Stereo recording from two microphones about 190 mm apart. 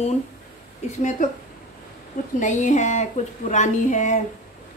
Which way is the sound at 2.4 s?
40° left (ahead or behind).